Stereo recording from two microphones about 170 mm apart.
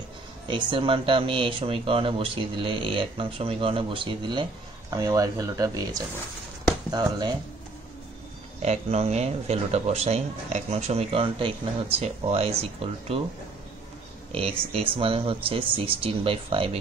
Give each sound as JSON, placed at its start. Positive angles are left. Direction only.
{"t": 0.5, "sound": "speech", "side_deg": -30}
{"t": 8.6, "sound": "speech", "side_deg": -40}
{"t": 14.3, "sound": "speech", "side_deg": -35}